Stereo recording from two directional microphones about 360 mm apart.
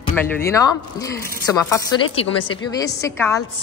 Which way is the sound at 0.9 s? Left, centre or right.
Centre.